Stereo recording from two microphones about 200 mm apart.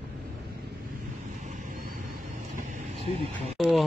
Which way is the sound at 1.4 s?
40° right (ahead or behind).